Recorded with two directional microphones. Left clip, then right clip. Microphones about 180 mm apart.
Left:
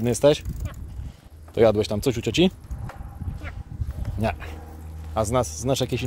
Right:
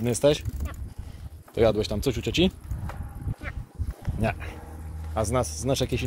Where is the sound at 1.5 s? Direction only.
40° left (ahead or behind).